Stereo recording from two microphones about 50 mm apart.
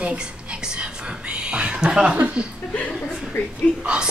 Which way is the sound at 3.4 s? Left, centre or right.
Left.